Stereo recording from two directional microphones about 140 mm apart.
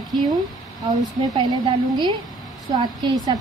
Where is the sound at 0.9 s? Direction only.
25° right (ahead or behind).